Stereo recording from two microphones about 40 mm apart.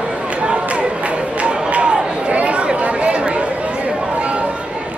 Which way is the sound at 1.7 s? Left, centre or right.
Right.